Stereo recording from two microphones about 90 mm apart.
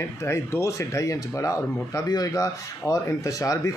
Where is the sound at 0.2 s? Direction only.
30° left (ahead or behind).